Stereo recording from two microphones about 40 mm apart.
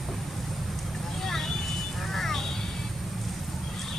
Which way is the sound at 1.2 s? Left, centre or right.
Centre.